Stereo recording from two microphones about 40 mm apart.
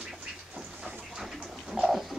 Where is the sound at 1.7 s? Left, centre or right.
Centre.